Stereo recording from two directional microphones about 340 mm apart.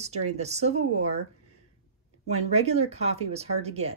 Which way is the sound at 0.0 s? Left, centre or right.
Centre.